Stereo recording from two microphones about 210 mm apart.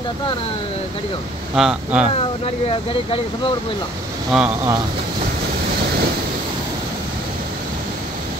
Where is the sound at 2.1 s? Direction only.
25° left (ahead or behind).